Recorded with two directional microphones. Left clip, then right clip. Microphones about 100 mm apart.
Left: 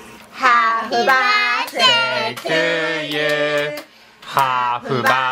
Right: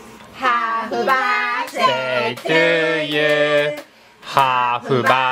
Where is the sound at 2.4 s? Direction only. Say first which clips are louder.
Right 3 dB; 50° right (ahead or behind).